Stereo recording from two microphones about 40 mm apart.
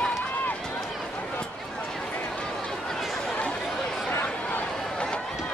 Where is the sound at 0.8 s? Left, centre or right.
Centre.